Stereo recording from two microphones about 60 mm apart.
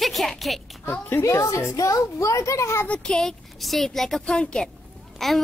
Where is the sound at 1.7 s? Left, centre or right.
Left.